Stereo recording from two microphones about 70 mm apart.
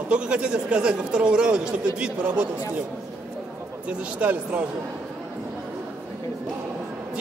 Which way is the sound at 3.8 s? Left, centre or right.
Right.